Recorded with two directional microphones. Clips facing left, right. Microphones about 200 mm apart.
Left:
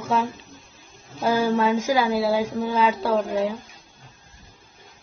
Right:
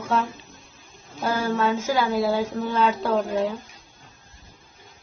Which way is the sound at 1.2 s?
10° left (ahead or behind).